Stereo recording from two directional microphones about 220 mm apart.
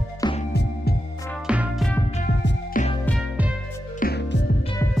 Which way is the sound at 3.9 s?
45° left (ahead or behind).